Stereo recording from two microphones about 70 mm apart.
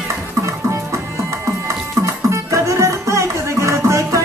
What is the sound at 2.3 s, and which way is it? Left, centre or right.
Music, right.